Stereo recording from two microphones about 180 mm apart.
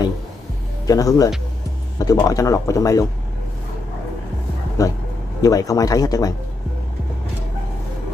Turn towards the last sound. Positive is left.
turn(degrees=20)  # may be behind; listen again after turning